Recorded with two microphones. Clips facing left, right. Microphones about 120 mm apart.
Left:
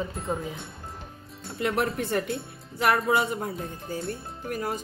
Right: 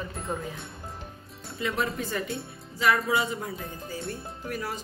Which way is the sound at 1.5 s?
65° left (ahead or behind).